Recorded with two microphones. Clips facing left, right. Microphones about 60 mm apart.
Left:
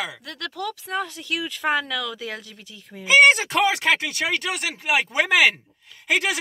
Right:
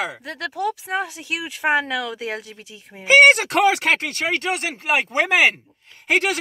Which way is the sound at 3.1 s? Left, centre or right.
Right.